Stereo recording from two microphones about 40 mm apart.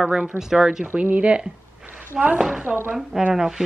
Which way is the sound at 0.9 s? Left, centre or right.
Right.